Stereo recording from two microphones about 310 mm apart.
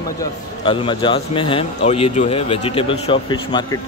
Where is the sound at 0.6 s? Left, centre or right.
Centre.